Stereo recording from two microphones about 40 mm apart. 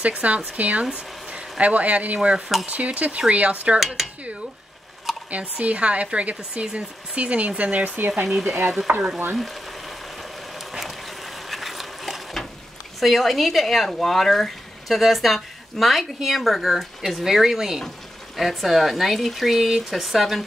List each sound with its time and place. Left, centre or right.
0.0 s speech: right
0.8 s speech: right
1.6 s speech: right
2.1 s speech: right
3.8 s speech: centre
5.3 s speech: right
8.9 s stir: right
9.4 s a sound: centre
13.0 s speech: centre